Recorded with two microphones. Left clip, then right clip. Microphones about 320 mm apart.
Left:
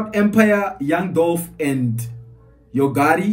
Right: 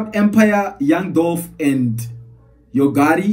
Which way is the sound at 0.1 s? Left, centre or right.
Centre.